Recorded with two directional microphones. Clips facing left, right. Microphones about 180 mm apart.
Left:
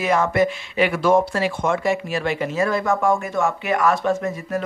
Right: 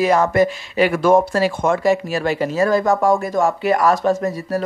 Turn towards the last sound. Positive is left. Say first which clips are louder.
# right 3 dB
turn(degrees=-35)  # may be behind; listen again after turning